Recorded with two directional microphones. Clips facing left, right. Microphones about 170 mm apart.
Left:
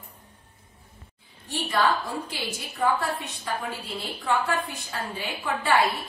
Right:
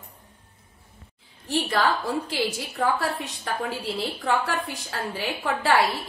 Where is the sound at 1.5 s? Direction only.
90° right.